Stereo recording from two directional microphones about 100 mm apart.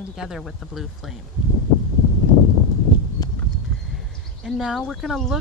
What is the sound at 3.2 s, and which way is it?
Horse, 40° left (ahead or behind).